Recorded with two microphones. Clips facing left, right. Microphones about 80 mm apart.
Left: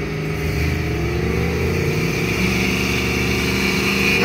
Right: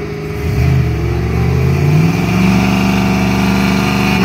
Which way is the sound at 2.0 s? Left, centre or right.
Right.